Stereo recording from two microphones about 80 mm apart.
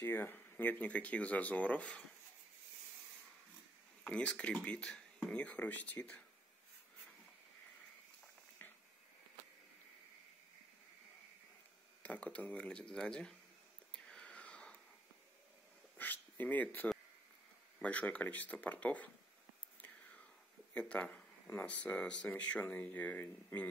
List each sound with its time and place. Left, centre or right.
0.0 s speech: left
4.0 s speech: centre
8.6 s a sound: left
12.0 s speech: centre
13.9 s a sound: centre
16.0 s speech: left
19.8 s whispering: centre
20.7 s speech: centre